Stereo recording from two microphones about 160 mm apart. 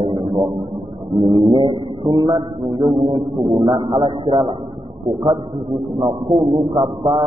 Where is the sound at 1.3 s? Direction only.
30° right (ahead or behind).